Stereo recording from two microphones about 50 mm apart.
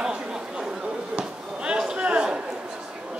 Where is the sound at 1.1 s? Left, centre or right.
Right.